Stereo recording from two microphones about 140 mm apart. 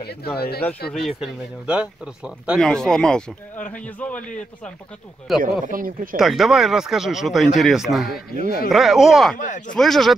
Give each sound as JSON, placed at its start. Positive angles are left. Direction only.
{"t": 0.4, "sound": "speech", "side_deg": 90}
{"t": 0.9, "sound": "speech", "side_deg": 0}
{"t": 2.6, "sound": "a man's voice", "side_deg": 5}
{"t": 5.4, "sound": "speech", "side_deg": -80}
{"t": 6.1, "sound": "speech", "side_deg": 0}
{"t": 9.4, "sound": "speech", "side_deg": 70}
{"t": 9.8, "sound": "speech", "side_deg": 0}